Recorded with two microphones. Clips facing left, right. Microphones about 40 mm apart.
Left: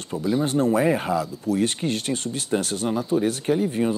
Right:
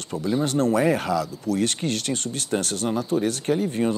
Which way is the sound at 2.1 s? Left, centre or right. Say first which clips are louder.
Left 1 dB; right.